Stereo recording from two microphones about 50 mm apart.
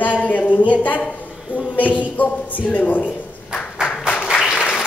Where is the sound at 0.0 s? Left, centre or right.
Left.